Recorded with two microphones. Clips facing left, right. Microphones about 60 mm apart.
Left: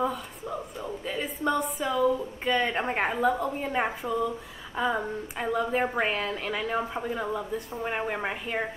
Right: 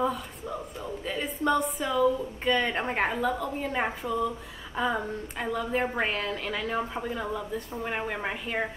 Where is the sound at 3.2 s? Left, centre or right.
Centre.